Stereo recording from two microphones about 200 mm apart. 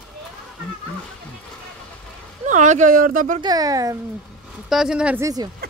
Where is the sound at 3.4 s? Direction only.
20° right (ahead or behind).